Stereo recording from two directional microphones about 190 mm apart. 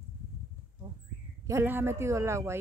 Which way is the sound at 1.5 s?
15° right (ahead or behind).